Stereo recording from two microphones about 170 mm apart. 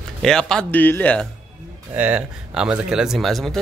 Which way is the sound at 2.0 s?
10° right (ahead or behind).